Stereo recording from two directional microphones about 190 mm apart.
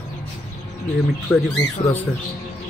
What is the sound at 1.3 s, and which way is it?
Speech, centre (ahead or behind).